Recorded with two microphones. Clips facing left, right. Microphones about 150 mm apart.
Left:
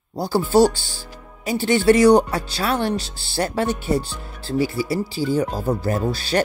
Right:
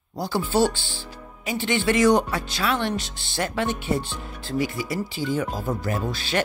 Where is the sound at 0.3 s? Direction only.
40° left (ahead or behind).